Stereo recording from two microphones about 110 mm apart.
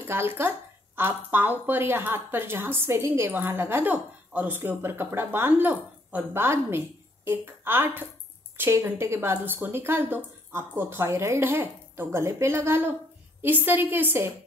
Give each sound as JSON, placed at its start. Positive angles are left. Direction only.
{"t": 0.0, "sound": "a woman's voice", "side_deg": -20}